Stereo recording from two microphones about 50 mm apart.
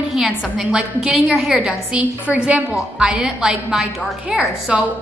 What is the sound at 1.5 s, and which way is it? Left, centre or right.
A woman's voice, centre.